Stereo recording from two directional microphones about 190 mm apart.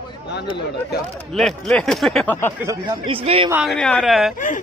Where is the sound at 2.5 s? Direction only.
15° right (ahead or behind); by 3.5 s 30° right (ahead or behind).